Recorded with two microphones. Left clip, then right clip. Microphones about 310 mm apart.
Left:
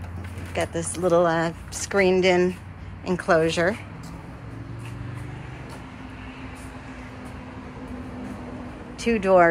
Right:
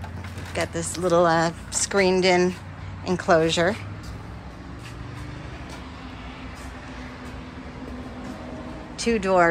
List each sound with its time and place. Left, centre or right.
0.6 s speech: centre
8.9 s speech: centre